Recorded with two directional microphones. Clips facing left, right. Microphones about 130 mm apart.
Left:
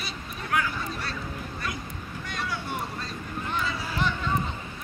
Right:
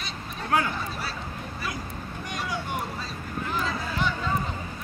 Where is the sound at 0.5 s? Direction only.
30° right (ahead or behind).